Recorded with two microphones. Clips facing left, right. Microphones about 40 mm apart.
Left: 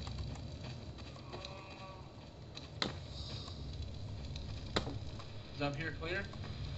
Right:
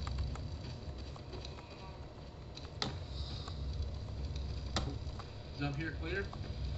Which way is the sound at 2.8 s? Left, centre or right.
Left.